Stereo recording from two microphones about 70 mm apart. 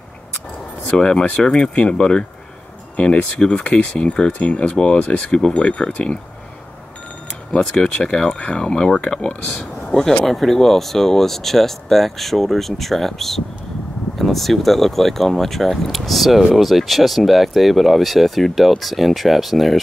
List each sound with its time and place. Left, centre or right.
0.9 s speech: centre
7.5 s speech: centre